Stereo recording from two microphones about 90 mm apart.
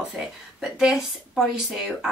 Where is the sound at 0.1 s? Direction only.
10° right (ahead or behind).